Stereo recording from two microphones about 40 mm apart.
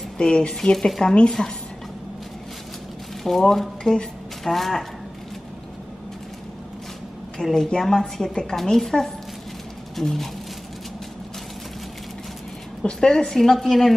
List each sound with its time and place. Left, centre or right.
0.2 s speech: left
0.6 s a woman's voice: centre
1.0 s speech: left
3.3 s a woman's voice: centre
4.5 s speech: centre
7.4 s a woman's voice: left; by 10.3 s centre
13.0 s a woman's voice: centre